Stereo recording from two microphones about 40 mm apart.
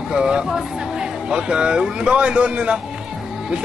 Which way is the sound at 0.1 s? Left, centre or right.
Centre.